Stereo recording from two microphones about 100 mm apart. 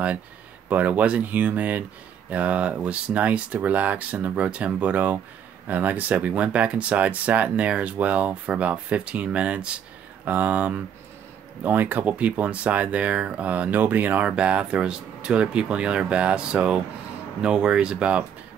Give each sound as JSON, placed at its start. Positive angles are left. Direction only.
{"t": 0.7, "sound": "speech", "side_deg": -15}